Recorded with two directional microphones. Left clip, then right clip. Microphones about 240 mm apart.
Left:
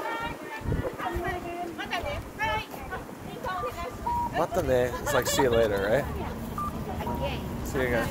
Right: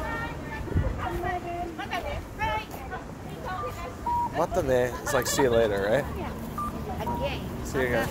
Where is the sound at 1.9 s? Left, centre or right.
Left.